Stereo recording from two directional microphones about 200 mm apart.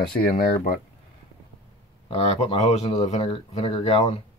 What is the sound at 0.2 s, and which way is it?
Speech, 50° left (ahead or behind).